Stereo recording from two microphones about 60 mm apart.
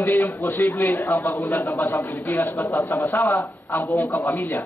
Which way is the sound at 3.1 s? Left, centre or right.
Left.